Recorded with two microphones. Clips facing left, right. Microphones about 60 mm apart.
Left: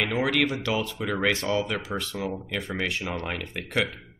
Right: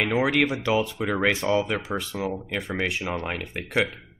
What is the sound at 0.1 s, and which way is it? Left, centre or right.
Speech, centre.